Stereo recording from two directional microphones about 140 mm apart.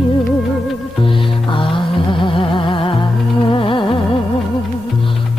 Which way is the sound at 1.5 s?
35° left (ahead or behind).